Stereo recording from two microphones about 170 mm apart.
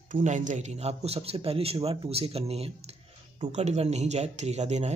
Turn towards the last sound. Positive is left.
turn(degrees=-40)  # may be behind; listen again after turning